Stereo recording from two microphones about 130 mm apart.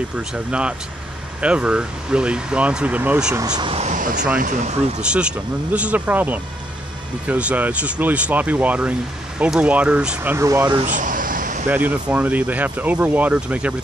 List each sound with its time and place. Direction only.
0.1 s speech: 10° right (ahead or behind)
3.3 s speech: 30° right (ahead or behind)
3.7 s speech: 70° right (ahead or behind)
5.1 s speech: 10° right (ahead or behind)
10.9 s a sound: 85° right
11.7 s speech: 15° right (ahead or behind)